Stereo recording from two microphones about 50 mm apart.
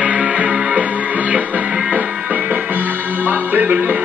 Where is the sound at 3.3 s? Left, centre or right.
Right.